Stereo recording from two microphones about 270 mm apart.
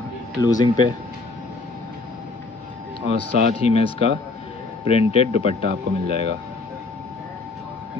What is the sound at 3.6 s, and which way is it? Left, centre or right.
Speech, left.